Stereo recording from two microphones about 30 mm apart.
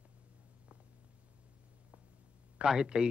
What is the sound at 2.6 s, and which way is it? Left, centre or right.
Speech, right.